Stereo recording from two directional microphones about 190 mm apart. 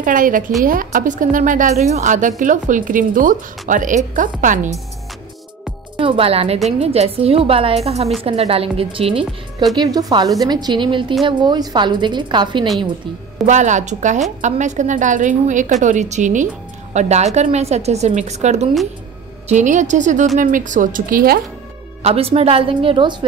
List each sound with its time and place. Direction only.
0.0 s a woman's voice: 45° right (ahead or behind)
5.9 s a woman's voice: 30° right (ahead or behind)
13.5 s a woman's voice: 40° right (ahead or behind)
22.0 s a woman's voice: 30° right (ahead or behind)